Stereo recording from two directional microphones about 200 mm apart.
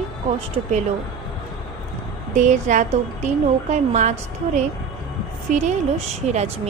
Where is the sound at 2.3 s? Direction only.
40° right (ahead or behind).